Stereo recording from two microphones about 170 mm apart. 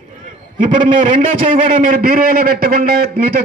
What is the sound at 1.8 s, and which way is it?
A man's voice, 55° right (ahead or behind).